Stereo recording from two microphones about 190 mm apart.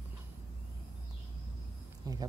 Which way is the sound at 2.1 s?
20° right (ahead or behind).